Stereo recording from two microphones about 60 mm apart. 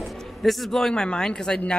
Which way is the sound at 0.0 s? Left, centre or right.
Centre.